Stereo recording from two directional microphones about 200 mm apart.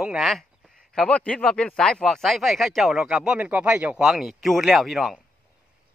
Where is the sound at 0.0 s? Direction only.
Centre (ahead or behind).